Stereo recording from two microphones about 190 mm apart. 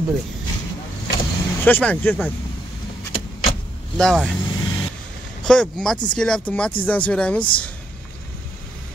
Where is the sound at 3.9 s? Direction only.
Centre (ahead or behind).